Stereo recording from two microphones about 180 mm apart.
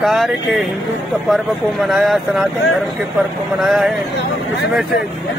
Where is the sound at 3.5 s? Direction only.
Centre (ahead or behind).